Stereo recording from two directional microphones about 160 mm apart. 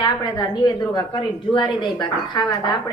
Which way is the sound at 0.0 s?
25° left (ahead or behind).